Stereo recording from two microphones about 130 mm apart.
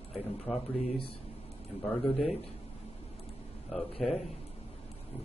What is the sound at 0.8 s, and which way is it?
Speech, 45° left (ahead or behind).